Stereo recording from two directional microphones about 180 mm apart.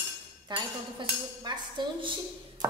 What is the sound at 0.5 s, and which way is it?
Speech, 25° right (ahead or behind).